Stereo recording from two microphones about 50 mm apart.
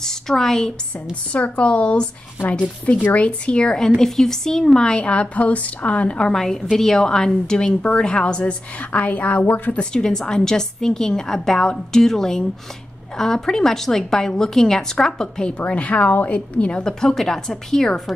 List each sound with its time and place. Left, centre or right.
0.0 s a woman's voice: centre
1.3 s a woman's voice: left
3.2 s a woman's voice: left
9.9 s a woman's voice: centre
15.6 s a woman's voice: left
17.0 s a woman's voice: centre